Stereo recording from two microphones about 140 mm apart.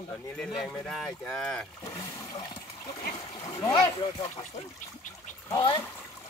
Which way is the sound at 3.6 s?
25° left (ahead or behind).